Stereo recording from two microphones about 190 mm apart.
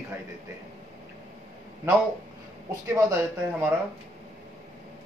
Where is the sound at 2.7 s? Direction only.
15° right (ahead or behind).